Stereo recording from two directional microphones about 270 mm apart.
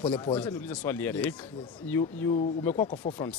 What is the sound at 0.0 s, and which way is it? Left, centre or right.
Speech, centre.